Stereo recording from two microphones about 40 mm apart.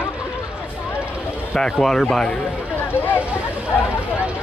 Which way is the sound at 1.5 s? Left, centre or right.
Centre.